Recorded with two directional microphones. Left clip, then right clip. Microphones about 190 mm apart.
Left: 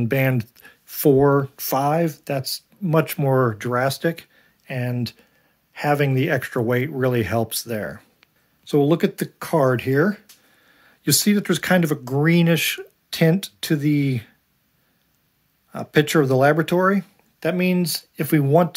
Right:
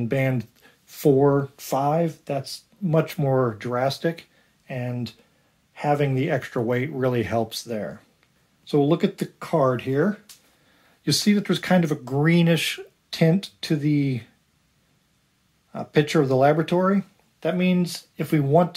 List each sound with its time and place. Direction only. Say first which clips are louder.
0.0 s speech: left 3 dB; 45° left (ahead or behind)
8.6 s speech: left 2 dB; 35° left (ahead or behind); by 10.2 s 55° left (ahead or behind)
11.1 s speech: left 2 dB; 35° left (ahead or behind)
15.7 s speech: left 3 dB; 35° left (ahead or behind)
17.4 s speech: left 2 dB; 55° left (ahead or behind)